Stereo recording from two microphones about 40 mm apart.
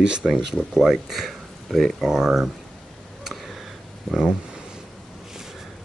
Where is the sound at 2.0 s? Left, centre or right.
Centre.